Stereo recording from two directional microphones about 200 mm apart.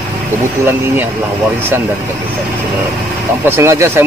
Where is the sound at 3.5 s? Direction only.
15° right (ahead or behind).